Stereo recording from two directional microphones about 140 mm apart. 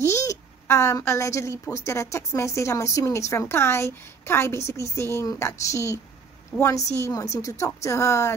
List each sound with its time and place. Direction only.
0.0 s speech: 20° left (ahead or behind)